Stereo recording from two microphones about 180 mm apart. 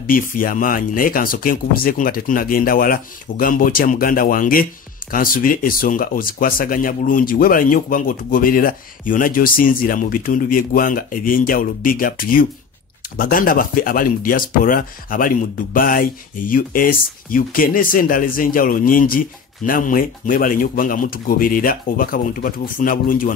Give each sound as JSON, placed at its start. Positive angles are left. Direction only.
{"t": 0.0, "sound": "speech", "side_deg": 50}